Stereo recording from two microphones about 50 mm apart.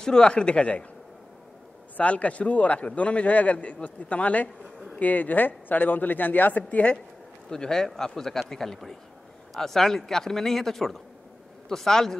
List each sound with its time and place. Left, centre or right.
0.0 s a man's voice: centre
2.0 s a man's voice: left
7.4 s speech: centre